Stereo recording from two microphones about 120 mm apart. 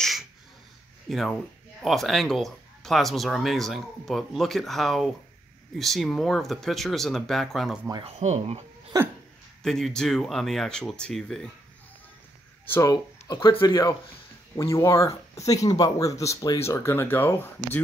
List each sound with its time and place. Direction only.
1.0 s speech: centre (ahead or behind)
8.0 s speech: 65° right (ahead or behind)
8.9 s hiccup: 30° right (ahead or behind)
9.6 s speech: 5° left (ahead or behind)
12.6 s speech: 20° left (ahead or behind)
12.9 s speech: 40° left (ahead or behind)
14.5 s speech: 25° left (ahead or behind)